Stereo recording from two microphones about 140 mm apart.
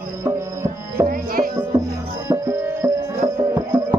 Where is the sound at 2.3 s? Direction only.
20° right (ahead or behind).